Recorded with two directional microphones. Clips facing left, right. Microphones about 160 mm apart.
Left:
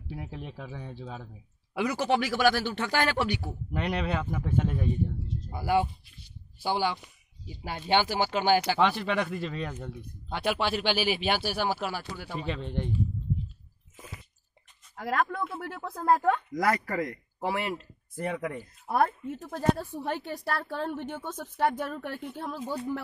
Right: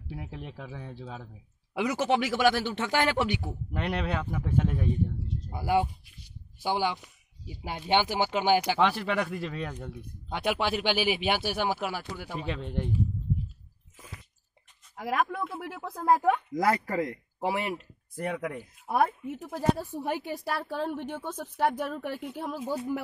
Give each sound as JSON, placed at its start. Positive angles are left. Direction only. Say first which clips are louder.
{"t": 0.1, "sound": "speech", "louder": "left 1 dB", "side_deg": 0}
{"t": 1.7, "sound": "speech", "louder": "even", "side_deg": -20}
{"t": 3.4, "sound": "speech", "louder": "left 1 dB", "side_deg": 0}
{"t": 5.5, "sound": "speech", "louder": "even", "side_deg": -15}
{"t": 8.7, "sound": "speech", "louder": "even", "side_deg": 0}
{"t": 10.3, "sound": "speech", "louder": "even", "side_deg": -15}
{"t": 12.4, "sound": "speech", "louder": "left 1 dB", "side_deg": -5}
{"t": 13.9, "sound": "chewing", "louder": "left 2 dB", "side_deg": 10}
{"t": 15.0, "sound": "speech", "louder": "even", "side_deg": -10}
{"t": 16.6, "sound": "speech", "louder": "right 1 dB", "side_deg": -25}
{"t": 18.1, "sound": "speech", "louder": "even", "side_deg": 0}